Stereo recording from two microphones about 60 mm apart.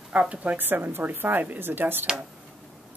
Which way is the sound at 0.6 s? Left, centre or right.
Right.